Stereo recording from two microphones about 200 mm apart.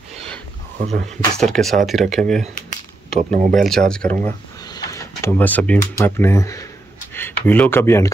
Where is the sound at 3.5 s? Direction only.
Centre (ahead or behind).